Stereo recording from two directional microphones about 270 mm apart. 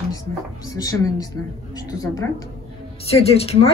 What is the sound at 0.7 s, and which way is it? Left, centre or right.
A woman's voice, centre.